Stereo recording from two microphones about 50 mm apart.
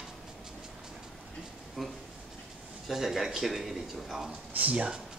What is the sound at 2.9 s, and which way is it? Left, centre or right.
Speech, centre.